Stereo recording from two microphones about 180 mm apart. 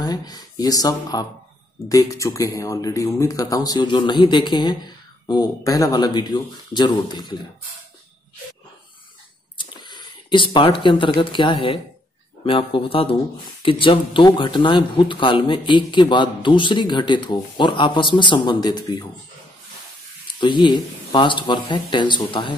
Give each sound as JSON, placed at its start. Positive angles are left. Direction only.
{"t": 0.0, "sound": "speech", "side_deg": 20}
{"t": 9.6, "sound": "speech", "side_deg": 25}
{"t": 20.3, "sound": "speech", "side_deg": 25}